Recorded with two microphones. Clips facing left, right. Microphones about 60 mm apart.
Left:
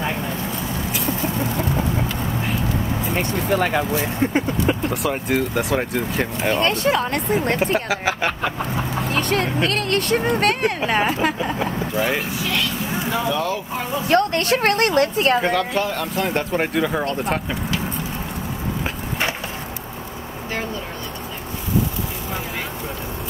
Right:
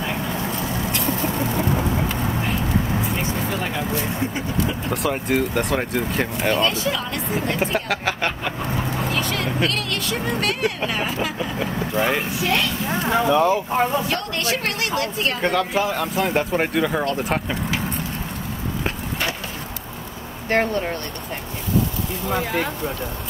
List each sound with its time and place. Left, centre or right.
0.9 s chicken: centre
3.4 s vehicle: left
4.8 s speech: centre
6.6 s speech: left
7.6 s speech: centre
9.1 s speech: left
11.9 s speech: centre
13.3 s speech: right
14.0 s speech: left
15.4 s speech: centre